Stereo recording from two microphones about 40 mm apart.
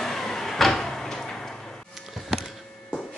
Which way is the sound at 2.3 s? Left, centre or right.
Centre.